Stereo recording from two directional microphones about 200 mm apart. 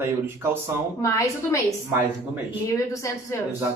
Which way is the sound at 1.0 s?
15° left (ahead or behind).